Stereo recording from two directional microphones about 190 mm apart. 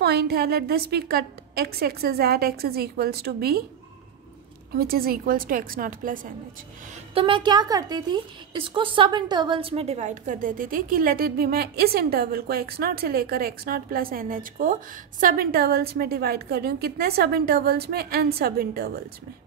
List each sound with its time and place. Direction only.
0.0 s a woman's voice: 55° right (ahead or behind)
4.7 s a woman's voice: 50° right (ahead or behind)
7.2 s a woman's voice: 25° right (ahead or behind); by 18.9 s 55° right (ahead or behind)